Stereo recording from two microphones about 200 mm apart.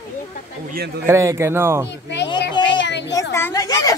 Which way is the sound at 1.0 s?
15° right (ahead or behind).